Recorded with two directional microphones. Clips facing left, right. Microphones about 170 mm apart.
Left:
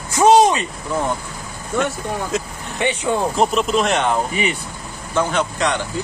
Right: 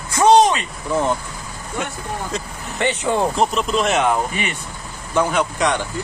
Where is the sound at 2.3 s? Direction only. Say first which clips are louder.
Left 3 dB; centre (ahead or behind).